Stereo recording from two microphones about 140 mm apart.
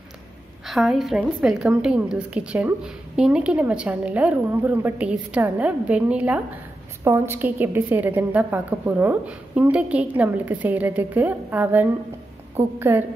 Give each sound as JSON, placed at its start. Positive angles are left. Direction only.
{"t": 0.7, "sound": "a woman's voice", "side_deg": 0}